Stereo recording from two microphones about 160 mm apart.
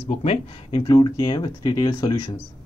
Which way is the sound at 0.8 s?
30° left (ahead or behind).